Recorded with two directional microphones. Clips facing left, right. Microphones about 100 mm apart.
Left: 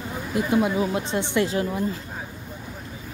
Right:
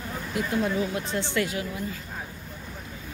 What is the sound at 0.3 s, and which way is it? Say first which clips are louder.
Speech: left 5 dB; 20° left (ahead or behind).